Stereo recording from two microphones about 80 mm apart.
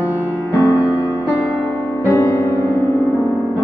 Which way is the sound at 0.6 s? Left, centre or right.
Left.